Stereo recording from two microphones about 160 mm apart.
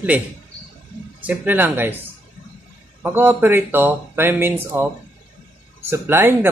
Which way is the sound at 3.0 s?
15° right (ahead or behind).